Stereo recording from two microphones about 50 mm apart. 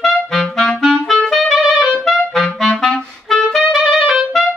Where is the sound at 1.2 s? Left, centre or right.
Centre.